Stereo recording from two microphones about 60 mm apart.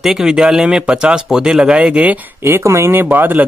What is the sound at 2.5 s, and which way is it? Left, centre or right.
Speech, right.